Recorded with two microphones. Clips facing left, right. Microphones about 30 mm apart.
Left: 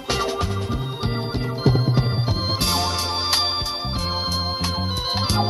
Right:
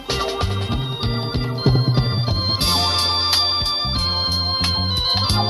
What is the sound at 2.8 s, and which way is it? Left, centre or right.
Music, right.